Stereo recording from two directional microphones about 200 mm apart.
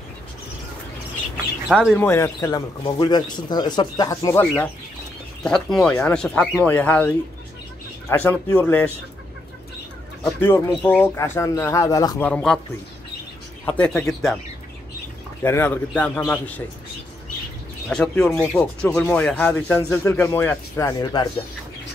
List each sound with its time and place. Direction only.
1.7 s speech: 5° right (ahead or behind)
2.0 s a man's voice: 10° left (ahead or behind)
10.2 s speech: 10° left (ahead or behind)
12.3 s speech: 5° left (ahead or behind)
13.7 s speech: 5° left (ahead or behind)
15.4 s speech: 10° left (ahead or behind)
17.8 s speech: 5° left (ahead or behind); by 21.3 s 20° left (ahead or behind)